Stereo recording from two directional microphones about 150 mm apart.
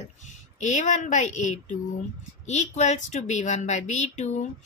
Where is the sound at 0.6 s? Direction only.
55° left (ahead or behind).